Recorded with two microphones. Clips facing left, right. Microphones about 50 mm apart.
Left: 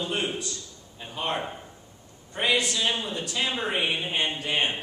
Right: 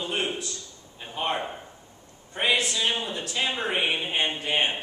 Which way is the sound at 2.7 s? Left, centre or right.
Centre.